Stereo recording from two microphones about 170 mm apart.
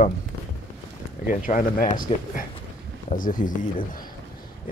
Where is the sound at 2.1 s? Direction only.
40° left (ahead or behind).